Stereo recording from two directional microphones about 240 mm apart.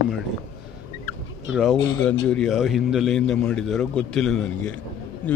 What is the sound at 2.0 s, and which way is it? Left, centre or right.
A man's voice, centre.